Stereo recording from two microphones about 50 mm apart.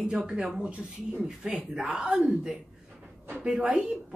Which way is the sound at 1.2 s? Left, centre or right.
Centre.